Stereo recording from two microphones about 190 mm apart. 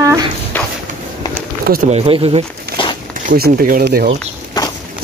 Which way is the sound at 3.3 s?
50° right (ahead or behind).